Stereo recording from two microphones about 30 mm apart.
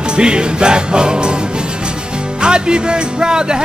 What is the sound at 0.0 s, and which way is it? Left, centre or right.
Music, right.